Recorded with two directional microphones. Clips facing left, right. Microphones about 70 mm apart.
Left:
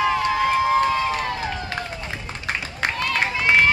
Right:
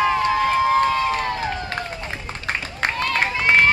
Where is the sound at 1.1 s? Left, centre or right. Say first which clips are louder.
Right 2 dB; right.